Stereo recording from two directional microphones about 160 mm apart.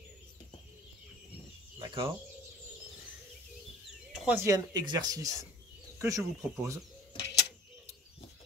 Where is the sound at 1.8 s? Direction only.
30° right (ahead or behind).